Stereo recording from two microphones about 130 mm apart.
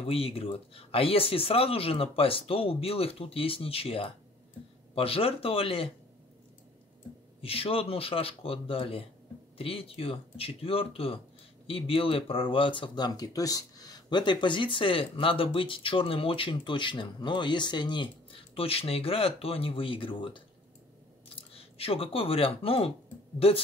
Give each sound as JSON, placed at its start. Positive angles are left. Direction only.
{"t": 0.0, "sound": "speech", "side_deg": 45}
{"t": 7.4, "sound": "speech", "side_deg": 45}